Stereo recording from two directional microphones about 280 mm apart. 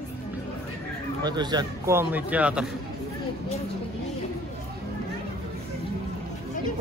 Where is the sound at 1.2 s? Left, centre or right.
Centre.